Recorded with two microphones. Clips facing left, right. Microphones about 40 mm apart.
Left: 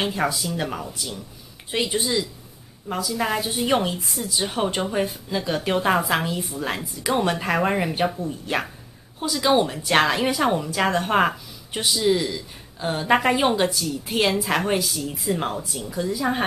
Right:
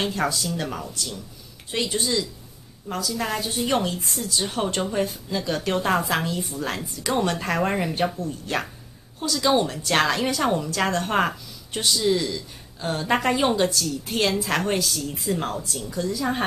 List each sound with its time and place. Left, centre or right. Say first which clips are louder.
0.0 s a woman's voice: left 1 dB; centre